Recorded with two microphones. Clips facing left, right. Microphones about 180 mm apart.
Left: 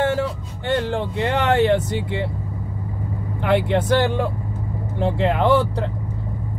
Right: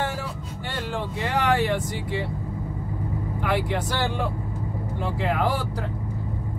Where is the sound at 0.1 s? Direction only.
60° left (ahead or behind).